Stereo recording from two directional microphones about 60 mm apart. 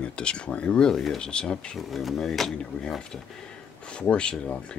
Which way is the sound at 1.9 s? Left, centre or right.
Centre.